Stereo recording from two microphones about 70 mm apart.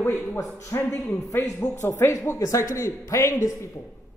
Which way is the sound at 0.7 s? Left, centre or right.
Left.